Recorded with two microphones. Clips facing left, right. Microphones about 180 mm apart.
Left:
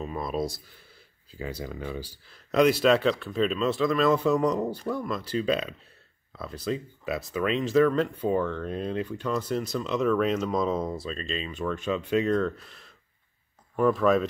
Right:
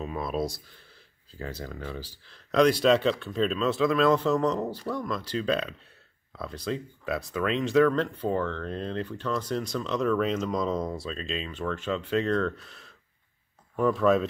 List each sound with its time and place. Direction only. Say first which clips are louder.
0.0 s speech: even; centre (ahead or behind)
1.4 s speech: left 2 dB; 10° left (ahead or behind)
11.5 s speech: left 2 dB; 15° left (ahead or behind)